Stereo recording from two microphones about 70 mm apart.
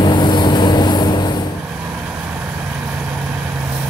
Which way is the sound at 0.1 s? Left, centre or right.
Left.